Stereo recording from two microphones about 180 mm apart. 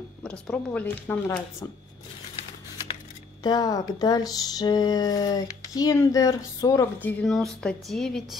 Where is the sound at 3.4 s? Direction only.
20° left (ahead or behind).